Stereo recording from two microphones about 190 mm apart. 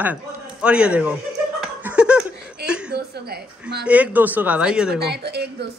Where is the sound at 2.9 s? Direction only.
55° right (ahead or behind).